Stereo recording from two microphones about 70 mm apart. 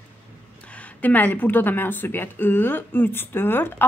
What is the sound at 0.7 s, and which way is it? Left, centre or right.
A woman's voice, left.